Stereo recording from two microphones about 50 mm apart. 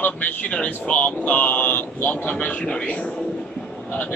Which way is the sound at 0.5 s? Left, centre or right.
Left.